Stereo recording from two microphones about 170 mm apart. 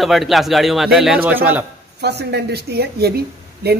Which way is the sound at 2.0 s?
75° right (ahead or behind).